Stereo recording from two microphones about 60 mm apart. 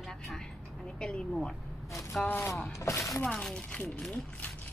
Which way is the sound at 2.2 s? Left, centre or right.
Left.